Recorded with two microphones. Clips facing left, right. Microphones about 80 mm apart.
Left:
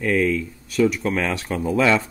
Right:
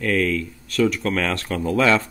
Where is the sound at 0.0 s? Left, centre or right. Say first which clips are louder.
Left 1 dB; centre.